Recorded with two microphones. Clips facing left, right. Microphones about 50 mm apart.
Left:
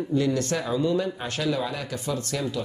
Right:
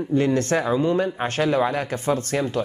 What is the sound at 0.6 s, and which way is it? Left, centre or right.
Speech, right.